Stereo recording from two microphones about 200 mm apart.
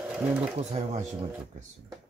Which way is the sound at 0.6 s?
35° right (ahead or behind).